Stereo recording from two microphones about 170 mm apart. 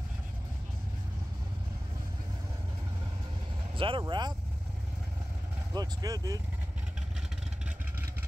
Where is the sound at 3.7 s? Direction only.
30° right (ahead or behind).